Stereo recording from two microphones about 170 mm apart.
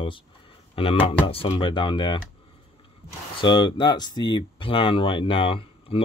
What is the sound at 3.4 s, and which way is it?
Speech, 25° left (ahead or behind).